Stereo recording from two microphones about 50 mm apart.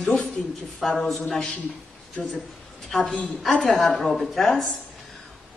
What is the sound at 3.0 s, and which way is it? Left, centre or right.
Speech, centre.